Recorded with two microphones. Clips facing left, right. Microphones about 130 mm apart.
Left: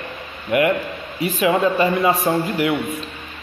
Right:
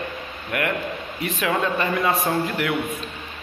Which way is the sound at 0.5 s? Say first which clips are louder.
Left 7 dB; 15° left (ahead or behind).